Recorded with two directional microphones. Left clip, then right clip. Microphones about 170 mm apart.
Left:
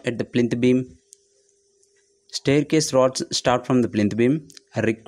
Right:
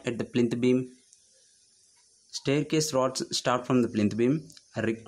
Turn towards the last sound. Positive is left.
turn(degrees=25)  # may be behind; listen again after turning